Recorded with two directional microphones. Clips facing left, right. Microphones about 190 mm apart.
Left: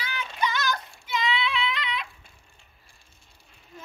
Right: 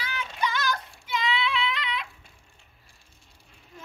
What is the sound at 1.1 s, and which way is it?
Child singing, 5° right (ahead or behind).